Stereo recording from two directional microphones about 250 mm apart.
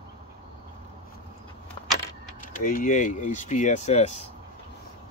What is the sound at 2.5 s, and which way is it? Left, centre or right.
Speech, left.